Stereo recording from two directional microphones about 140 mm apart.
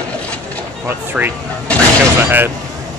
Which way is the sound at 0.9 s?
15° right (ahead or behind).